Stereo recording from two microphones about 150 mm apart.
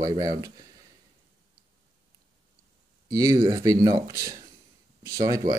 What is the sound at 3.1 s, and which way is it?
Speech, 25° right (ahead or behind).